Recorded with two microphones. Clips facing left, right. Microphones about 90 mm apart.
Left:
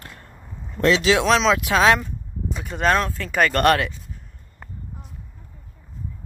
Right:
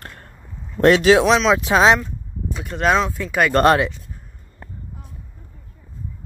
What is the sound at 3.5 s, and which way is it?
Speech, 25° right (ahead or behind).